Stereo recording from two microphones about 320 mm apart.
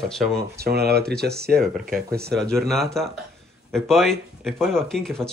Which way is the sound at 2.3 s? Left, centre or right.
Centre.